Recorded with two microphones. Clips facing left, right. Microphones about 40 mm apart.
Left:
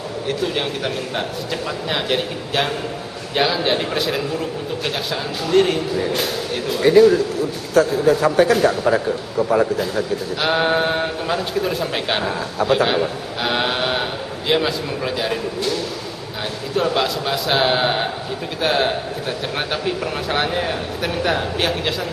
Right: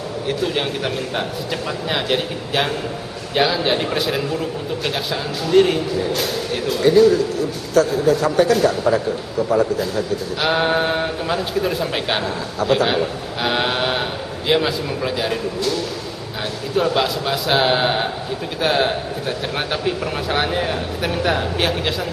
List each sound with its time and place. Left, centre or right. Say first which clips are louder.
0.3 s speech: right 1 dB; centre
6.8 s a man's voice: left 1 dB; centre
10.4 s speech: even; centre
16.7 s speech: right 1 dB; centre
20.2 s speech: right 1 dB; centre